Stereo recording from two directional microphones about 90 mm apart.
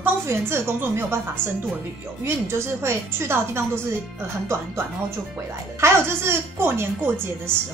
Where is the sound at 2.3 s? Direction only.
30° right (ahead or behind).